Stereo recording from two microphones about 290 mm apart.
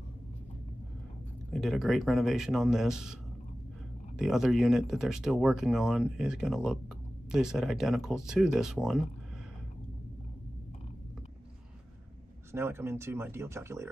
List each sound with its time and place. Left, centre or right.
1.5 s speech: centre
4.2 s speech: centre
12.5 s speech: centre